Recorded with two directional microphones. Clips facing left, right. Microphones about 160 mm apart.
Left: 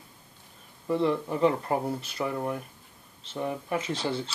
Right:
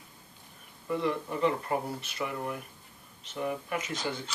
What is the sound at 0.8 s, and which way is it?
Speech, 30° left (ahead or behind).